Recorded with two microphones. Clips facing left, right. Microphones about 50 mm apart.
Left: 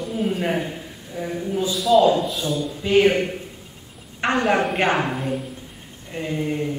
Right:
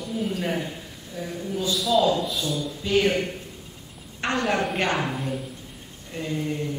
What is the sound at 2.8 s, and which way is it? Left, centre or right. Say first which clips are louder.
A man's voice: left 5 dB; left.